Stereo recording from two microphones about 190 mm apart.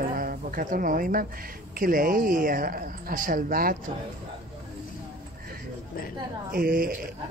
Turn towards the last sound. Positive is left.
turn(degrees=-50)  # may be behind; listen again after turning